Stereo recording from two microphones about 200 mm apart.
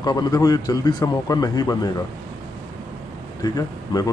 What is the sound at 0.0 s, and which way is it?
Speech, 20° left (ahead or behind).